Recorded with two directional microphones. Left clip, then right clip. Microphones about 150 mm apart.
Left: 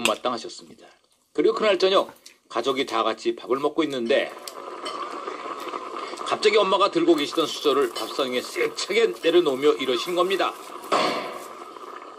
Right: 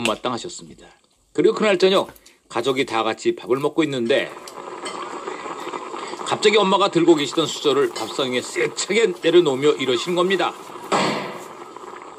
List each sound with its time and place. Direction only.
0.0 s speech: 45° right (ahead or behind)